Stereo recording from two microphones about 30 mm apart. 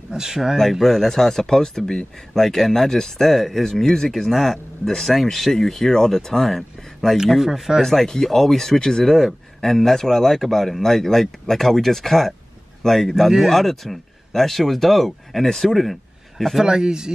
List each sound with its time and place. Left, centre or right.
0.1 s speech: centre
0.7 s speech: centre
7.2 s speech: centre
7.8 s speech: centre
9.0 s a man's voice: centre
13.5 s speech: centre
16.6 s speech: right